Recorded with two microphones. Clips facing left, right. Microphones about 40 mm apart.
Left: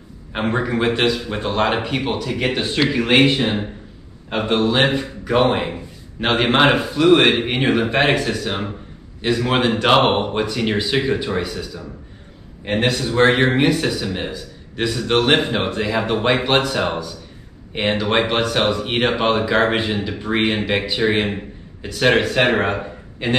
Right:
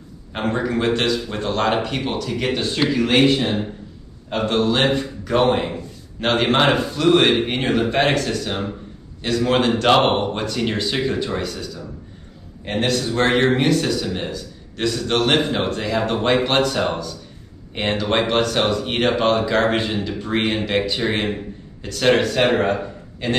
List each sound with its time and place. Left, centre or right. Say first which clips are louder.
0.3 s a man's voice: left 1 dB; centre